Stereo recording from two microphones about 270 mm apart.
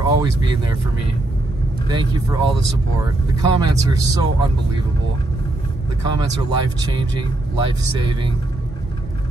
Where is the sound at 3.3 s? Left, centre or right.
Centre.